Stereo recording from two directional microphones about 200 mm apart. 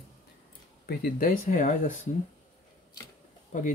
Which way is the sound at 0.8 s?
45° left (ahead or behind).